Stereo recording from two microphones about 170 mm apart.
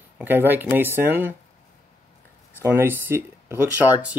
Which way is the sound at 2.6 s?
15° right (ahead or behind).